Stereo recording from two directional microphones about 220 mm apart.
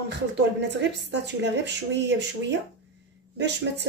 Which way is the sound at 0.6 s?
50° right (ahead or behind).